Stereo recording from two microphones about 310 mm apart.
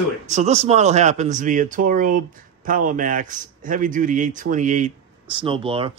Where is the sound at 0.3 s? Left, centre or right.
Right.